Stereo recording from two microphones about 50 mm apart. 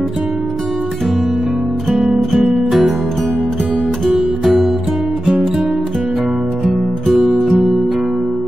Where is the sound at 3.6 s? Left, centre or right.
Right.